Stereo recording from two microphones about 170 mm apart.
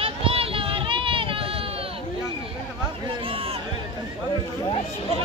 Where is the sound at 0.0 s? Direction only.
35° right (ahead or behind).